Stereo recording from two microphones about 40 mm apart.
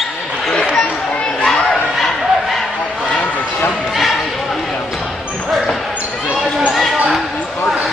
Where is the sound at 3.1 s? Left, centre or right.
Left.